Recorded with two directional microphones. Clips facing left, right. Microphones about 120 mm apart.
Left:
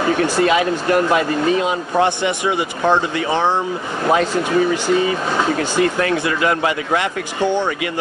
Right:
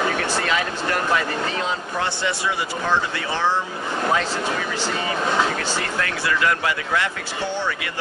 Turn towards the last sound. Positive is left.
turn(degrees=20)  # may be behind; listen again after turning